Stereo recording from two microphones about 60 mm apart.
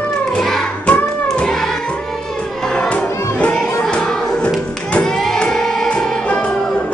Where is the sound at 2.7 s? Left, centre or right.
Left.